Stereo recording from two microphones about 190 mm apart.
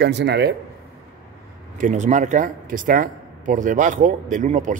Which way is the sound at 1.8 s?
40° right (ahead or behind).